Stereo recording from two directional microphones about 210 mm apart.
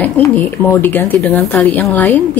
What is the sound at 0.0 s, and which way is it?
A woman's voice, 10° left (ahead or behind).